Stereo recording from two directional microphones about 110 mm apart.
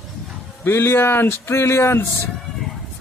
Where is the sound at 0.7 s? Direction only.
20° left (ahead or behind).